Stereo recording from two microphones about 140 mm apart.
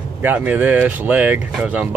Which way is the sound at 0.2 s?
10° right (ahead or behind).